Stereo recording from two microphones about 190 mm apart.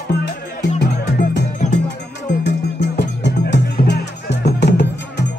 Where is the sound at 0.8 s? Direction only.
60° left (ahead or behind).